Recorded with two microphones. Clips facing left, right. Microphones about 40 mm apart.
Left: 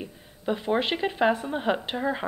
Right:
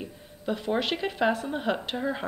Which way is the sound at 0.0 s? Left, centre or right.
Centre.